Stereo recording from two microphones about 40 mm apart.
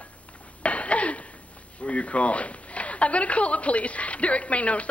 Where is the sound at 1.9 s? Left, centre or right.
Left.